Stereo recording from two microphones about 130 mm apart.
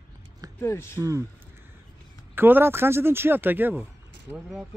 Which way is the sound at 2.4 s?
15° right (ahead or behind).